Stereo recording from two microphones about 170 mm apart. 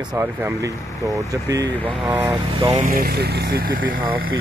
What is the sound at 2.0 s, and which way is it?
Speech, 10° right (ahead or behind).